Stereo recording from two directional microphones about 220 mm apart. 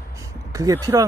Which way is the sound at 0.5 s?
15° right (ahead or behind).